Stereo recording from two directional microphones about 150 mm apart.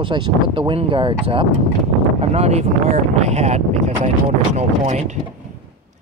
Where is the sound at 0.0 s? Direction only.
30° right (ahead or behind); by 5.2 s 50° right (ahead or behind).